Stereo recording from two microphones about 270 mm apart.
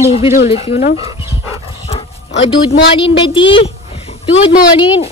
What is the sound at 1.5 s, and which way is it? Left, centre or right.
Dog, left.